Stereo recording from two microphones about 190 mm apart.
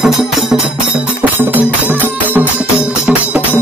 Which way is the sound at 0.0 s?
Centre (ahead or behind).